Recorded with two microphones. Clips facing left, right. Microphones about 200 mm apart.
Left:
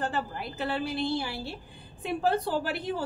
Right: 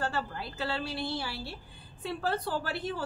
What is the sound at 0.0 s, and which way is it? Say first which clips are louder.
A woman's voice: left 2 dB; 15° left (ahead or behind).